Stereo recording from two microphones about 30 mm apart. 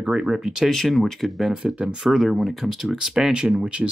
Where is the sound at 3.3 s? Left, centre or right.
Right.